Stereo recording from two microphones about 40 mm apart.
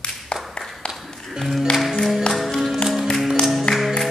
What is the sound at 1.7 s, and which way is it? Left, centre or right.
Music, centre.